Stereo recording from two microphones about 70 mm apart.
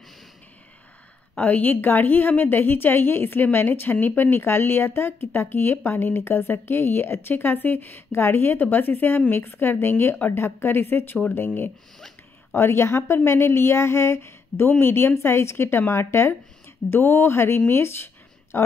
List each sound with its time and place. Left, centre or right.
1.4 s a woman's voice: left